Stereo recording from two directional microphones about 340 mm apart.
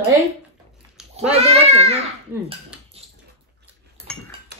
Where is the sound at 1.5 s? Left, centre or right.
Centre.